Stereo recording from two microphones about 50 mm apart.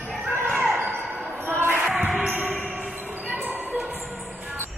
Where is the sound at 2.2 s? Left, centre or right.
Right.